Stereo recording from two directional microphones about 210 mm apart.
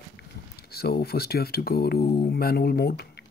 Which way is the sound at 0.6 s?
50° left (ahead or behind).